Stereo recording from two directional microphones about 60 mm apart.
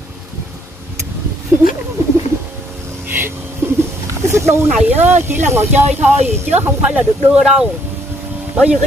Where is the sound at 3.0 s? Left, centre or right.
Right.